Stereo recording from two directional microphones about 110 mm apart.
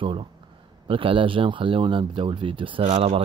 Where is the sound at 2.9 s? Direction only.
90° right.